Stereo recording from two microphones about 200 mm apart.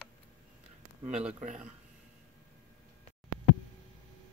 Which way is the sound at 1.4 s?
40° right (ahead or behind).